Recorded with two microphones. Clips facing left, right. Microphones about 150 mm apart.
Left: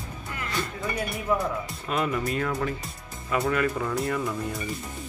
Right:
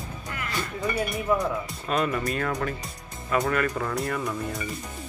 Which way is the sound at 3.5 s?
15° left (ahead or behind).